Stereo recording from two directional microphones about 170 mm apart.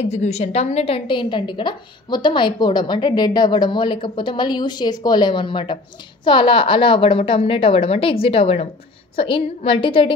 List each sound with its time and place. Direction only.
0.0 s a woman's voice: 40° left (ahead or behind)